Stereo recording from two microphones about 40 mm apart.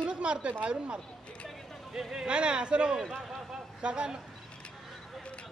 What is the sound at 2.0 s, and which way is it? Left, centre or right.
Speech, centre.